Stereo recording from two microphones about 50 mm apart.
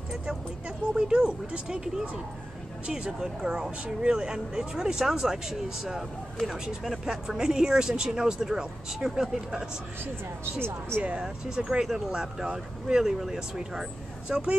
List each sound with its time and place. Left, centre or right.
0.1 s speech: centre
11.0 s speech: right; by 13.4 s centre
14.3 s speech: centre